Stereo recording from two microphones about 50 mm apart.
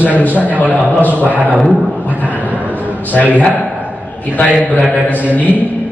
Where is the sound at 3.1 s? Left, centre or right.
Left.